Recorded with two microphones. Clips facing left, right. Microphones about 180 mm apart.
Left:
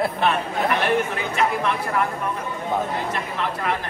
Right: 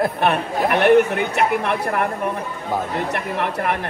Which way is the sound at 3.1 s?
60° right (ahead or behind).